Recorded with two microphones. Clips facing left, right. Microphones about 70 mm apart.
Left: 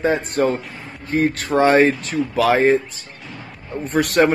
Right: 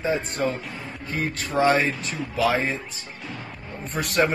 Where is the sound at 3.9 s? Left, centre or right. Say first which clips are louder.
Left 10 dB; left.